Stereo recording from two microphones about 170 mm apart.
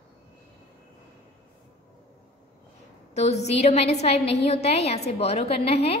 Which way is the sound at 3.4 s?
40° left (ahead or behind).